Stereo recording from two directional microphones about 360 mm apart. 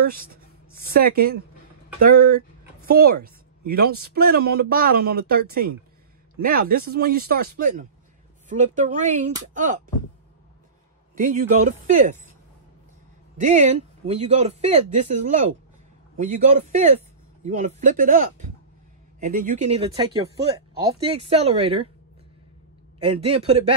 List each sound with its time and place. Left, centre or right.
0.0 s speech: right
11.1 s speech: right
13.4 s speech: centre
23.0 s speech: centre